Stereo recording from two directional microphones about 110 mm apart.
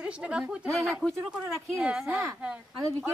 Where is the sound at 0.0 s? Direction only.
10° right (ahead or behind).